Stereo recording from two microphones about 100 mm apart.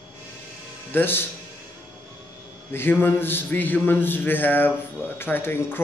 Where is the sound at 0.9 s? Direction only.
20° left (ahead or behind).